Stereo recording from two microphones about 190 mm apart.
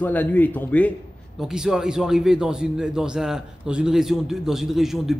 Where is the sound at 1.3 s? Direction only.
Centre (ahead or behind).